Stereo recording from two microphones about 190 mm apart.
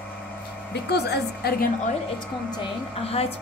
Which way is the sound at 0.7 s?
60° left (ahead or behind).